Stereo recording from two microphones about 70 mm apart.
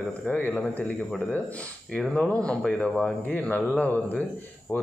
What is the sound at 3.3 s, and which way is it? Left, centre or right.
Speech, left.